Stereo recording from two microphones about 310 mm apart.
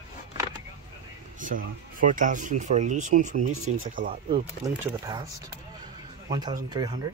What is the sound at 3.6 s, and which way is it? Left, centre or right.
Speech, right.